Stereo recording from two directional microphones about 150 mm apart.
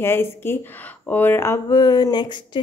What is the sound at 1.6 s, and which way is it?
Speech, 25° left (ahead or behind).